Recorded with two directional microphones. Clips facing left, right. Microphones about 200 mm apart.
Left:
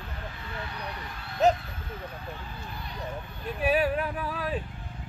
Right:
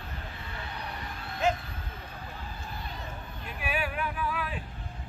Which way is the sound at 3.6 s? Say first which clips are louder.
Left 8 dB; 35° left (ahead or behind).